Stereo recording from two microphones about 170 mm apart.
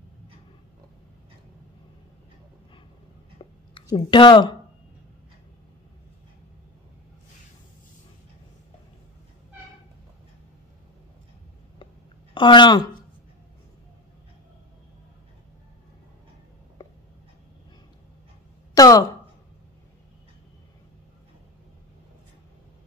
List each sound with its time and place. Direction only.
3.9 s speech: 30° left (ahead or behind)
12.4 s speech: 25° left (ahead or behind)
18.8 s a sound: 20° left (ahead or behind)